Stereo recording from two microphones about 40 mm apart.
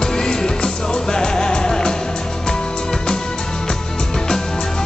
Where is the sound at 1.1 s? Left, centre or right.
Centre.